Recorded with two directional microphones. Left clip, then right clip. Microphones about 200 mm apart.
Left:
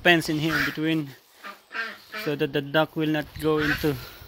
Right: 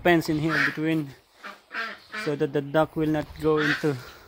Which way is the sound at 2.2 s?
Centre (ahead or behind).